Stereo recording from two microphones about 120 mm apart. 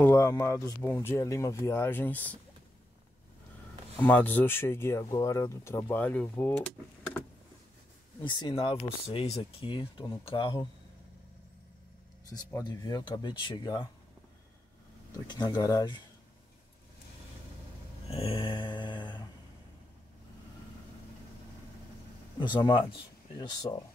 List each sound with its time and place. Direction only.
0.0 s speech: 25° left (ahead or behind)
4.0 s speech: 15° left (ahead or behind)
8.2 s speech: 40° left (ahead or behind)
12.4 s speech: 30° left (ahead or behind)
15.2 s speech: 35° left (ahead or behind)
18.1 s mantra: 50° left (ahead or behind)
22.4 s speech: 40° left (ahead or behind)